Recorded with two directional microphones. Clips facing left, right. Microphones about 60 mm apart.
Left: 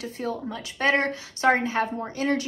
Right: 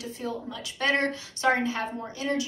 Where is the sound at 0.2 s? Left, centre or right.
Left.